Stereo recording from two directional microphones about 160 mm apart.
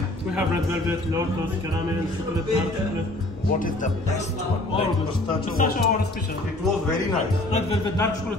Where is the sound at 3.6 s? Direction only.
50° left (ahead or behind).